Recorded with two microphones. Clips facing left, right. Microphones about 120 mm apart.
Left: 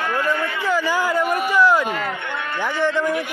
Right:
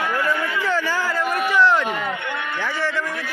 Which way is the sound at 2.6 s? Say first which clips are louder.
Left 6 dB; 20° left (ahead or behind).